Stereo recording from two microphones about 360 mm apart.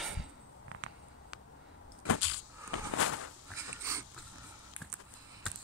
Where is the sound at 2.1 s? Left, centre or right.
Left.